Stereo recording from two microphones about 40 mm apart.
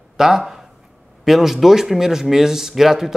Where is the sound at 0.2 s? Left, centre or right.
Centre.